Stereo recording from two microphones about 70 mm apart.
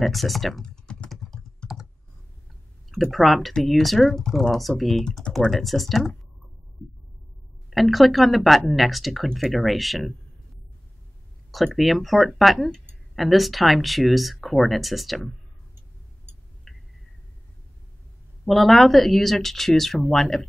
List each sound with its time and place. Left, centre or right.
0.0 s speech: centre
0.8 s typing: centre
2.9 s speech: centre
7.7 s speech: centre
11.5 s speech: centre
16.7 s a sound: centre
18.4 s speech: centre